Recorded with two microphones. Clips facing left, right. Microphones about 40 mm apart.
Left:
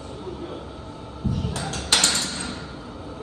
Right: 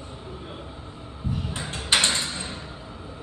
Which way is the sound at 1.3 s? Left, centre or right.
Right.